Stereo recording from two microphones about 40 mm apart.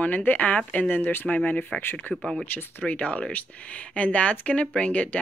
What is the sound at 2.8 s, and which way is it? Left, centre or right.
Speech, left.